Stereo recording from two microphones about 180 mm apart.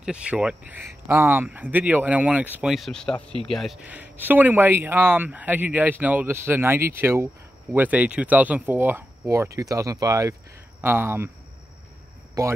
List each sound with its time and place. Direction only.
0.0 s speech: 5° right (ahead or behind)
3.8 s speech: 10° right (ahead or behind)
12.4 s speech: 15° right (ahead or behind)